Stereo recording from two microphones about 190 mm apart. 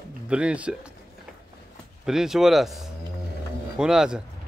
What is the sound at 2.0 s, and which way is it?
Speech, centre (ahead or behind).